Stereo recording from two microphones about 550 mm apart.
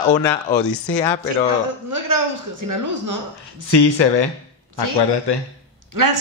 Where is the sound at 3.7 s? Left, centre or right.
Left.